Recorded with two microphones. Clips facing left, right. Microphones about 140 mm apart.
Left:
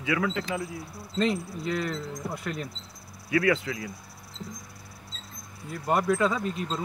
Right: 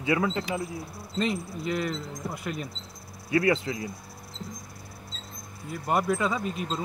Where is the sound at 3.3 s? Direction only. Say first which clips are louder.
Right 1 dB; 30° right (ahead or behind).